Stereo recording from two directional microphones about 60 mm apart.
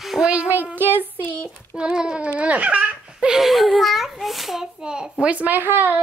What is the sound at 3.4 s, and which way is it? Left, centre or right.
A child's voice, centre.